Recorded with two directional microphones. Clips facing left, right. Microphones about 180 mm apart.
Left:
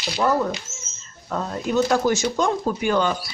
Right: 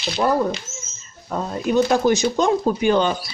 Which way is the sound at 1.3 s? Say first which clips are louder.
Right 3 dB; 15° right (ahead or behind).